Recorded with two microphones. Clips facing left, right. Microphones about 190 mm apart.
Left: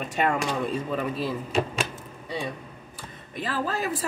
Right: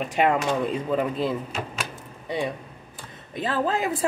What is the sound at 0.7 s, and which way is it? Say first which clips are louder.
Speech: right 3 dB; 20° right (ahead or behind).